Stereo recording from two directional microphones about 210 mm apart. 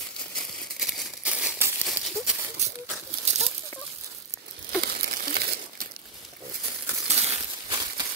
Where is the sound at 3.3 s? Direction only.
30° right (ahead or behind).